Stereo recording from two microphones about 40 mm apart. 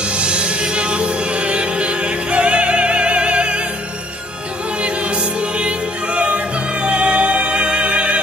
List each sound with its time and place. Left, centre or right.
0.1 s music: right
4.8 s music: right